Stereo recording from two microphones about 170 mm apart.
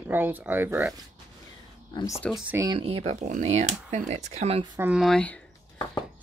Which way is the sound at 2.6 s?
30° right (ahead or behind).